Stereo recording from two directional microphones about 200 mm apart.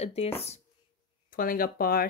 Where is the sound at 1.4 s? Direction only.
45° left (ahead or behind).